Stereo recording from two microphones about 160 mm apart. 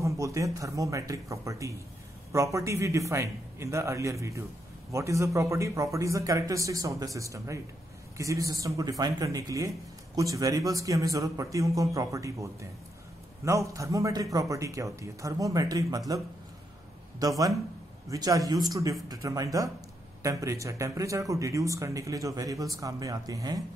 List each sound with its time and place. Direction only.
0.0 s speech: 20° right (ahead or behind)
13.5 s speech: 20° right (ahead or behind)
17.2 s speech: 20° right (ahead or behind)